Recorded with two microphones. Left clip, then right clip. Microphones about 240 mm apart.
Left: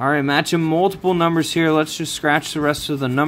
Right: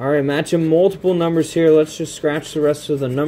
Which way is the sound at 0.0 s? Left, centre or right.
Centre.